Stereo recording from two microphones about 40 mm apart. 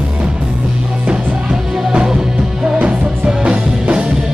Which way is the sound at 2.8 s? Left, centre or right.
Right.